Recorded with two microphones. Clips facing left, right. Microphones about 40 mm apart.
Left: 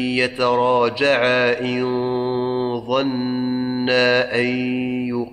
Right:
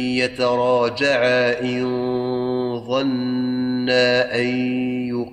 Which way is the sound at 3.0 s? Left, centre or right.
Centre.